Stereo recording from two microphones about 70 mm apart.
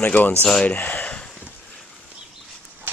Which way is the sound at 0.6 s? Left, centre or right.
Left.